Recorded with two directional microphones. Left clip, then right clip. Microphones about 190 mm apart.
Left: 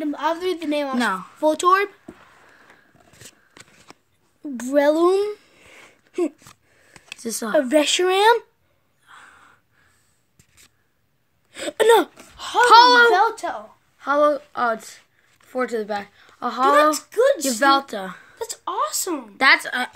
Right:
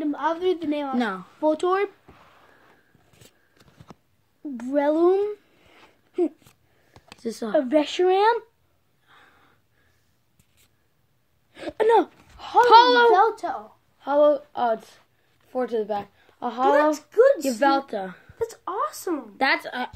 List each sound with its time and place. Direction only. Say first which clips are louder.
0.0 s a woman's voice: left 1 dB; 50° left (ahead or behind)
0.9 s speech: left 4 dB; 25° left (ahead or behind)
1.4 s speech: left 5 dB; 60° left (ahead or behind)
3.9 s a sound: right 2 dB; 15° right (ahead or behind)
4.4 s a sound: left 5 dB; 65° left (ahead or behind)
7.2 s speech: left 2 dB; 25° left (ahead or behind)
7.5 s speech: left 4 dB; 60° left (ahead or behind)
9.0 s a sound: left 8 dB; 25° left (ahead or behind)
11.5 s speech: left 4 dB; 65° left (ahead or behind); by 12.6 s 45° left (ahead or behind)
12.6 s a child's voice: left 4 dB; 25° left (ahead or behind)
13.9 s a woman's voice: left 1 dB; 25° left (ahead or behind)